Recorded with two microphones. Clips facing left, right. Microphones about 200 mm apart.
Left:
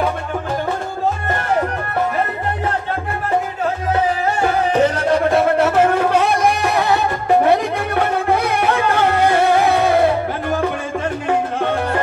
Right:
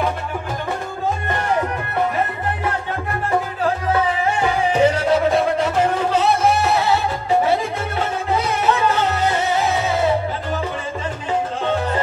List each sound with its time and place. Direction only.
4.7 s music: 10° right (ahead or behind)
5.4 s a sound: 60° left (ahead or behind)
6.2 s music: 15° left (ahead or behind)
6.7 s music: 55° left (ahead or behind)
11.2 s music: 60° left (ahead or behind)